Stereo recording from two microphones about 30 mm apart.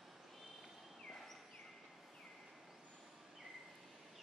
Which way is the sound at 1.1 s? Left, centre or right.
Centre.